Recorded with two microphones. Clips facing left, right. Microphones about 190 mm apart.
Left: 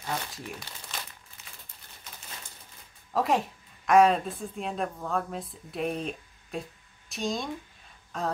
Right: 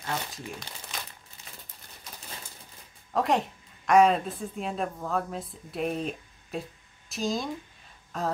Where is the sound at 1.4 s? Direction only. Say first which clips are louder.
Right 3 dB; 35° right (ahead or behind).